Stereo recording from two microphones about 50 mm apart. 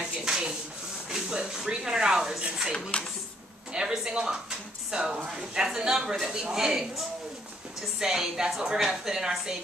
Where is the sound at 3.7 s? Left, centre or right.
Centre.